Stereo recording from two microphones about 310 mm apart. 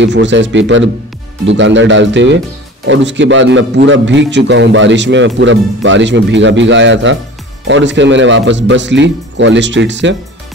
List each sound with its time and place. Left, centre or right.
0.0 s a man's voice: right